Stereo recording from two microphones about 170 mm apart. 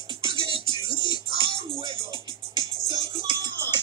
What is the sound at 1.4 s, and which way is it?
Music, 35° right (ahead or behind).